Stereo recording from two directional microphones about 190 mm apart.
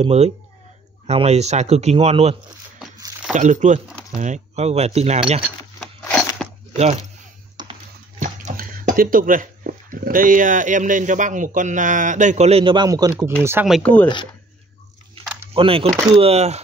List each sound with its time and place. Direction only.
0.0 s speech: 35° right (ahead or behind)
3.3 s speech: 40° right (ahead or behind)
5.4 s crumpling: 5° left (ahead or behind)
6.7 s speech: 35° right (ahead or behind)
7.6 s a sound: 25° right (ahead or behind)
8.2 s speech: 40° right (ahead or behind); by 13.7 s 15° right (ahead or behind)
13.7 s speech: 5° left (ahead or behind)
14.0 s speech: 25° left (ahead or behind)
15.5 s speech: 30° right (ahead or behind)